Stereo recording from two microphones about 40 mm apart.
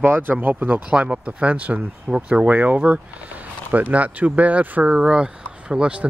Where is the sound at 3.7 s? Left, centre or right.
Right.